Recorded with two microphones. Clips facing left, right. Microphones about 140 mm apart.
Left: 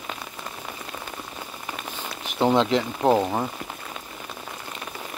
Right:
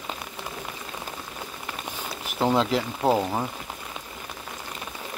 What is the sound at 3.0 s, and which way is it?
Speech, 15° left (ahead or behind).